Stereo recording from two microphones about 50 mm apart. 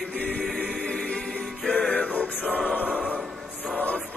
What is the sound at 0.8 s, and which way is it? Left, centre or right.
Music, left.